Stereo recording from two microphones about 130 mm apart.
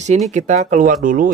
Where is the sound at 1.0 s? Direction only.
90° right.